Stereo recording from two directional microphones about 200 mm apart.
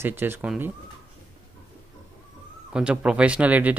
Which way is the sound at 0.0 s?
10° right (ahead or behind).